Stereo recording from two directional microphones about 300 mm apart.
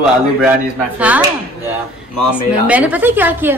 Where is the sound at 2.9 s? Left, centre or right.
Centre.